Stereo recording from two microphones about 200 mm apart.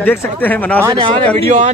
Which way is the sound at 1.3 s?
35° right (ahead or behind).